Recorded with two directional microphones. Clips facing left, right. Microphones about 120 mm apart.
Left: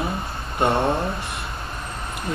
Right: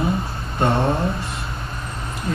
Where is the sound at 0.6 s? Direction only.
20° left (ahead or behind).